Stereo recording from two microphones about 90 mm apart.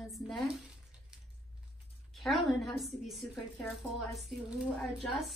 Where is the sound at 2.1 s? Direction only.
Centre (ahead or behind).